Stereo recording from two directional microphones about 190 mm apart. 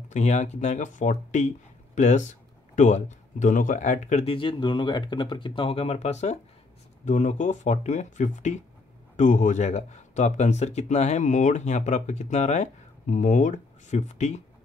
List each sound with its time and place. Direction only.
0.1 s speech: 40° left (ahead or behind)